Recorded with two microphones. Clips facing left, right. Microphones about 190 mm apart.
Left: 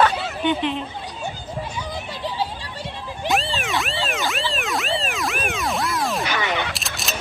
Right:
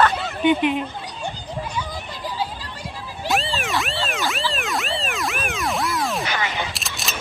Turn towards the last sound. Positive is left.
turn(degrees=0)  # may be behind; listen again after turning